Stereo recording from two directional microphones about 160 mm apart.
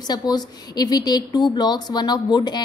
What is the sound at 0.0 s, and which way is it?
A woman's voice, 25° left (ahead or behind).